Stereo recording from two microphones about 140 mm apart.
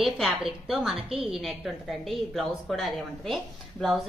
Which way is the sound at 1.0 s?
40° right (ahead or behind).